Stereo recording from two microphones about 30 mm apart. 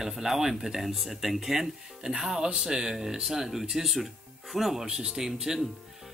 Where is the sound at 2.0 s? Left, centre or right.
Right; by 4.8 s centre.